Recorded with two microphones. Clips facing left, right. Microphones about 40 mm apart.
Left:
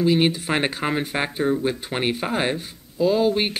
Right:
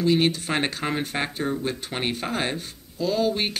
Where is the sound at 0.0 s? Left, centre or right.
Centre.